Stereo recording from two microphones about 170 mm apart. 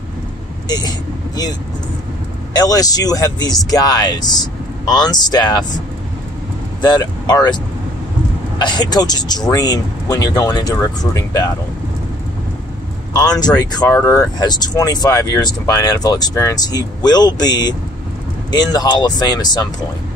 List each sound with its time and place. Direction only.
0.7 s speech: 25° left (ahead or behind)
2.5 s speech: 20° left (ahead or behind)
6.8 s speech: 25° left (ahead or behind)
13.1 s speech: 20° left (ahead or behind)